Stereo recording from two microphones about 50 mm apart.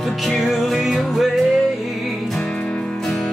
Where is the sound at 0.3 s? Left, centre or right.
Centre.